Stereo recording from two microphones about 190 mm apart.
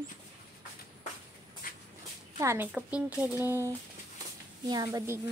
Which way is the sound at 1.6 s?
50° left (ahead or behind).